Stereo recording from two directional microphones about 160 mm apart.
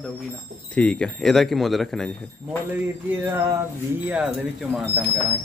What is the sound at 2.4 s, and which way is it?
Speech, 10° right (ahead or behind).